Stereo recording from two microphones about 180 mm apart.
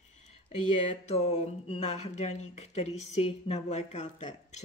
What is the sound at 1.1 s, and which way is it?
Speech, 35° left (ahead or behind).